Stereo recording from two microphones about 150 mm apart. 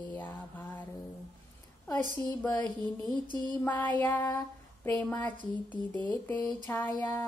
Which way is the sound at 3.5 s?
10° left (ahead or behind).